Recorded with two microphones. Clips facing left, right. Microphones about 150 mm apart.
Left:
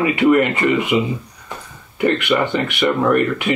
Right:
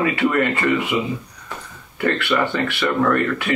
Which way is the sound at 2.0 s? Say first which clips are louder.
Left 3 dB; 15° left (ahead or behind).